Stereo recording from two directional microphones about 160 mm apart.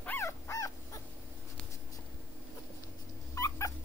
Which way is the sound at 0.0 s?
15° left (ahead or behind).